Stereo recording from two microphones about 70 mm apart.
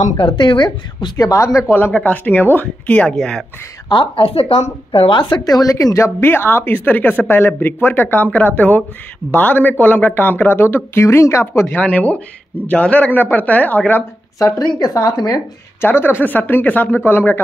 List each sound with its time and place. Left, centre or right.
0.2 s a woman's voice: left
1.1 s speech: left
1.7 s speech: left
3.1 s speech: centre
5.1 s speech: left
6.2 s speech: left
11.7 s speech: left
14.6 s speech: left
15.1 s speech: left
15.8 s speech: left